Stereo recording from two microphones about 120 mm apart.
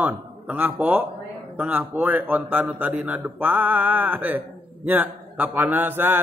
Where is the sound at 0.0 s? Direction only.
15° right (ahead or behind).